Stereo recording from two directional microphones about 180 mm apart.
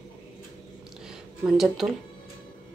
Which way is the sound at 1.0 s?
Centre (ahead or behind).